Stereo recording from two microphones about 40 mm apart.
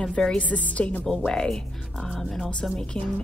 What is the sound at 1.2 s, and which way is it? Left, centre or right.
A woman's voice, centre.